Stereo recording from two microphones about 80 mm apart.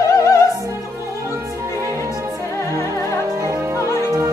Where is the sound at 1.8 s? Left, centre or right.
Right.